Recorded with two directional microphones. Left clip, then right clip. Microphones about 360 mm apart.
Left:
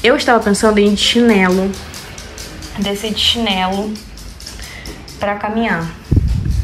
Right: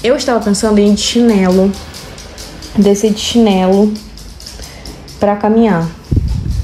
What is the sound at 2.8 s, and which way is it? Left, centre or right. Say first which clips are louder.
Speech: right 5 dB; right.